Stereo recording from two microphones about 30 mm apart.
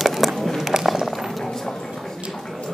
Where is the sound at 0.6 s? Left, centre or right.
Centre.